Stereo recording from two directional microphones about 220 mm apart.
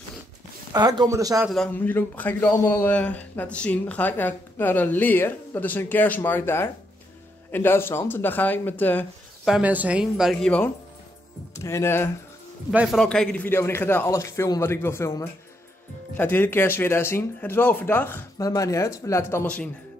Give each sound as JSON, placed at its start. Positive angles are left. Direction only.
{"t": 0.7, "sound": "speech", "side_deg": -20}
{"t": 1.5, "sound": "a man's voice", "side_deg": 5}
{"t": 12.7, "sound": "a man's voice", "side_deg": 0}